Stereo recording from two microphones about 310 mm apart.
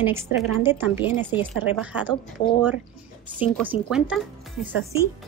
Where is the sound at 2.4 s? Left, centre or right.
Left.